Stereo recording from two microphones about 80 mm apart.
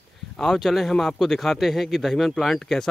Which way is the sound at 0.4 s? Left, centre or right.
Centre.